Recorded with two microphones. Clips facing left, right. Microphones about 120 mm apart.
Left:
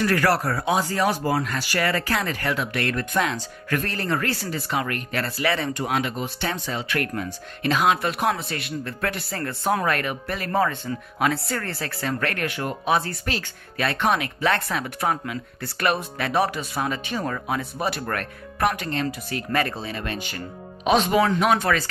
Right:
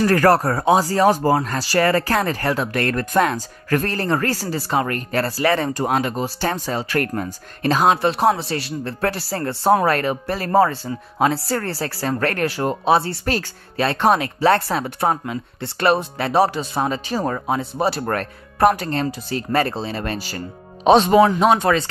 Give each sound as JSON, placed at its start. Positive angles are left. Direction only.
{"t": 0.0, "sound": "speech", "side_deg": -40}